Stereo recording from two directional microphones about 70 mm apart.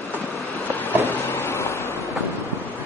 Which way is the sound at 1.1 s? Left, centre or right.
Left.